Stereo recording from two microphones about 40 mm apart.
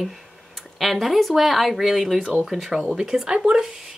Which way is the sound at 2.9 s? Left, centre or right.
Centre.